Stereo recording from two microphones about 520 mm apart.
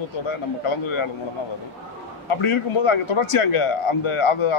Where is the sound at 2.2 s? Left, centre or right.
Left.